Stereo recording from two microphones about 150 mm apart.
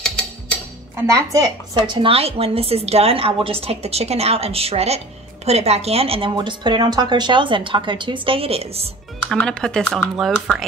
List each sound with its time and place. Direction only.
0.9 s a woman's voice: 20° right (ahead or behind)
2.0 s a woman's voice: 40° right (ahead or behind)
9.3 s speech: 5° left (ahead or behind)